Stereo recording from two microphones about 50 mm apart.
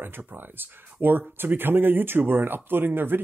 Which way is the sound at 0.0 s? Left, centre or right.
Right.